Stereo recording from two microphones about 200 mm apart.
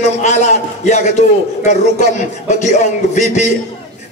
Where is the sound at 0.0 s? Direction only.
35° left (ahead or behind).